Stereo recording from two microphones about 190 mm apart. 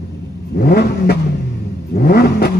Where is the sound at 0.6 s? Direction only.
55° left (ahead or behind).